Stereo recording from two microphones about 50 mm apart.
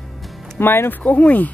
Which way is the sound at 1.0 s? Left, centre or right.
Left.